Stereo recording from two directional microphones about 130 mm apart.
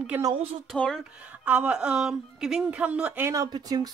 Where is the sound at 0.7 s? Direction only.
Centre (ahead or behind).